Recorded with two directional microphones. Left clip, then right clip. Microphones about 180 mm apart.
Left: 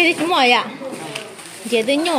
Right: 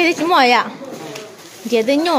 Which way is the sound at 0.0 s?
20° right (ahead or behind).